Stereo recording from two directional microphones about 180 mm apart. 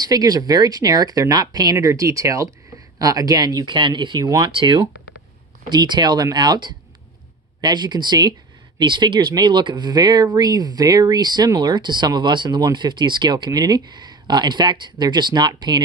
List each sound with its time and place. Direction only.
0.0 s speech: 20° right (ahead or behind)